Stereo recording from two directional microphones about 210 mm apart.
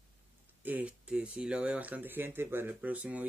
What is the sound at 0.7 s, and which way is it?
Speech, 5° right (ahead or behind).